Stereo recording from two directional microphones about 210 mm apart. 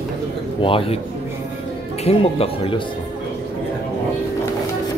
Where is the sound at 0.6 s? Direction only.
25° left (ahead or behind).